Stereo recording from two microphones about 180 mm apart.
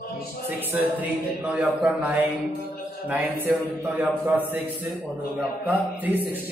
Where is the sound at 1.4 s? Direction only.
10° right (ahead or behind).